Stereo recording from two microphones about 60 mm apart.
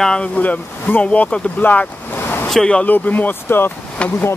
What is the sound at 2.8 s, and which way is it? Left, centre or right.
Speech, left.